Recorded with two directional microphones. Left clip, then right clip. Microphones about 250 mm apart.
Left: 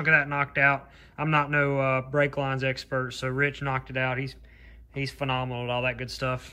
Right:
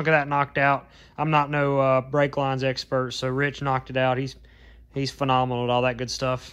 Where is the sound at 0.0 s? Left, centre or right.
Centre.